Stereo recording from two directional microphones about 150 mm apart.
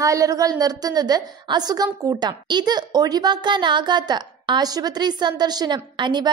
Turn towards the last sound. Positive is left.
turn(degrees=-30)  # may be behind; listen again after turning